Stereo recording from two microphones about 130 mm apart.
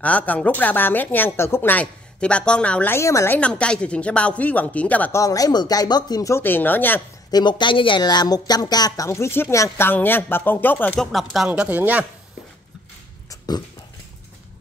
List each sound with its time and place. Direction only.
0.0 s speech: 10° left (ahead or behind)
3.3 s speech: 10° left (ahead or behind)
5.2 s speech: 25° left (ahead or behind)
7.2 s speech: 35° left (ahead or behind); by 11.0 s 15° left (ahead or behind)
11.0 s speech: centre (ahead or behind)